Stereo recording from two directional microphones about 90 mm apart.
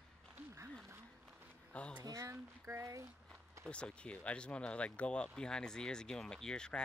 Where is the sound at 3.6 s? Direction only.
10° left (ahead or behind).